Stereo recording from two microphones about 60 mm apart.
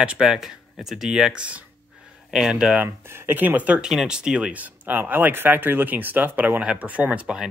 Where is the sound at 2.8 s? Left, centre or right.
Right.